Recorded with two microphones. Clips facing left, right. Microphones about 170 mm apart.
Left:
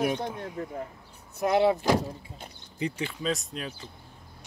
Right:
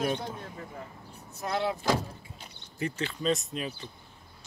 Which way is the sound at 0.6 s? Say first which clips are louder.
Left 8 dB; 40° left (ahead or behind).